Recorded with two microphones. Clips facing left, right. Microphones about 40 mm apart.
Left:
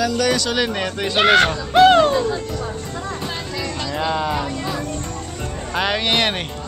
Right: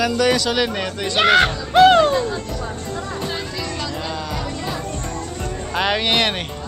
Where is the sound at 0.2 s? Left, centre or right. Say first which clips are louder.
Right 1 dB; centre.